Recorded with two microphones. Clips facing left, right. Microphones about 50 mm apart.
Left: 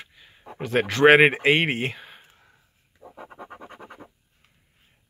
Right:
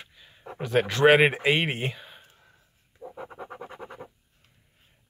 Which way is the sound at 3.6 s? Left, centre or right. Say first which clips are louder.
Right 2 dB; centre.